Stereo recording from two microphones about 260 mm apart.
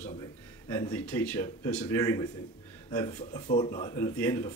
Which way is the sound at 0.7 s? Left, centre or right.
Centre.